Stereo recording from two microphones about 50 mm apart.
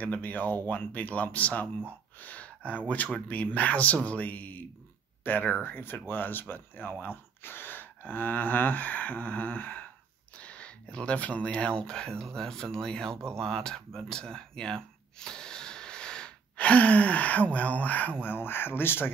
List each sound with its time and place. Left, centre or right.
0.0 s speech: left
1.9 s a sound: left
3.3 s speech: left
10.3 s speech: left
13.4 s gasp: centre
16.5 s speech: left
18.2 s speech: left